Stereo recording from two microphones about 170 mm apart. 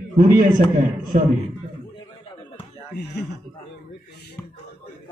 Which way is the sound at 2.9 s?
80° left.